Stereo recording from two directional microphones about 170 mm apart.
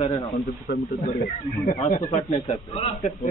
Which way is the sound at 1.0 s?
50° left (ahead or behind).